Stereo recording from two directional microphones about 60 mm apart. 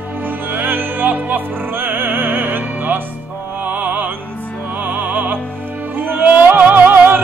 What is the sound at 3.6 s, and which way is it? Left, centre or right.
Music, right.